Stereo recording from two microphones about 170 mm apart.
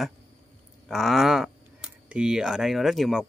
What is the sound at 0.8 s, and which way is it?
A man's voice, centre (ahead or behind).